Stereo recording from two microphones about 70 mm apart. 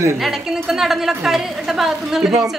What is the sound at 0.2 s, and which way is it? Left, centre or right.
A woman's voice, centre.